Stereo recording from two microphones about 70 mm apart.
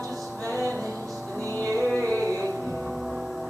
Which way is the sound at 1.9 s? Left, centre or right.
Left.